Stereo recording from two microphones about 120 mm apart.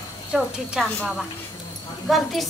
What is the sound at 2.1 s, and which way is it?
Speech, centre (ahead or behind).